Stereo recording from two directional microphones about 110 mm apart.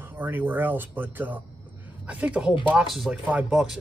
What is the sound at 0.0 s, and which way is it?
Speech, 20° right (ahead or behind).